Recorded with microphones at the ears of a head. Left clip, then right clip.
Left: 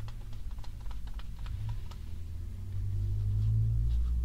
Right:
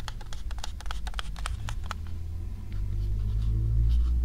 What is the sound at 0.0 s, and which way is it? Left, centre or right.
Computer keyboard, right.